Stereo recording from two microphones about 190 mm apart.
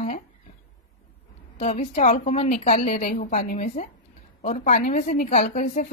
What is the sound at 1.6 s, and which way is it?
A woman's voice, 35° left (ahead or behind).